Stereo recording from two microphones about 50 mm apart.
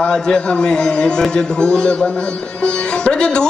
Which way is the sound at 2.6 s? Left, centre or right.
Left.